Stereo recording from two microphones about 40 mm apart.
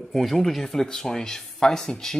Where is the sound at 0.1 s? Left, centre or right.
Centre.